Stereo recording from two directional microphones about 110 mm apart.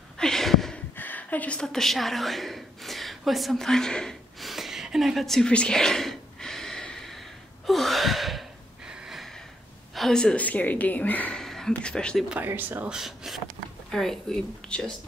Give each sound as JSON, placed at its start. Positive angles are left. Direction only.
{"t": 0.2, "sound": "a sound", "side_deg": 5}
{"t": 0.9, "sound": "a sound", "side_deg": 15}
{"t": 7.6, "sound": "gasp", "side_deg": 0}
{"t": 9.9, "sound": "a woman's voice", "side_deg": 5}
{"t": 12.3, "sound": "speech", "side_deg": -15}
{"t": 12.9, "sound": "speech", "side_deg": -5}